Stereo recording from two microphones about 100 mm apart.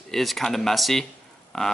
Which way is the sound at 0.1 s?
Centre (ahead or behind).